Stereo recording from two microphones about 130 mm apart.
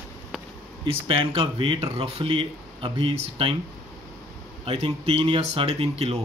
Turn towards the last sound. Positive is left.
turn(degrees=-50)  # may be behind; listen again after turning